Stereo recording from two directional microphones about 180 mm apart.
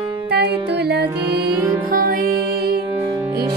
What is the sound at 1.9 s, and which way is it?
Music, 50° right (ahead or behind).